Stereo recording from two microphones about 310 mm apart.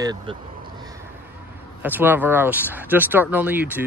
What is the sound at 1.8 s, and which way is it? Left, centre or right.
Speech, centre.